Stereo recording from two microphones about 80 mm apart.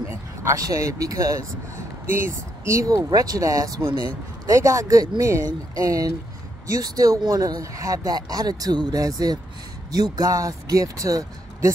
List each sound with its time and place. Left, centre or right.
0.1 s speech: right
2.0 s speech: right
3.1 s speech: right
3.8 s speech: right
4.5 s speech: right